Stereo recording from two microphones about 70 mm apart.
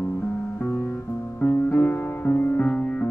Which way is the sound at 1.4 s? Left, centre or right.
Left.